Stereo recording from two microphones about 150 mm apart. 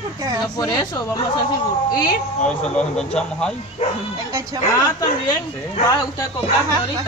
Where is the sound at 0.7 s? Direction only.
30° left (ahead or behind).